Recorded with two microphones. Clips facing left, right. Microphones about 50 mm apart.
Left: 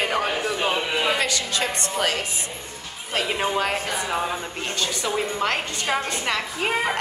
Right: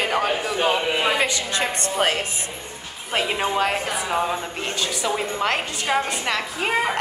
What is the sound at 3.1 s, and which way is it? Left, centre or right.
A woman's voice, centre.